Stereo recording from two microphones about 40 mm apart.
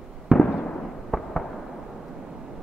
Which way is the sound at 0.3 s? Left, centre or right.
Centre.